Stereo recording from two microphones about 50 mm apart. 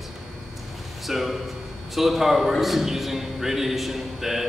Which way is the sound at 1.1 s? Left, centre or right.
Centre.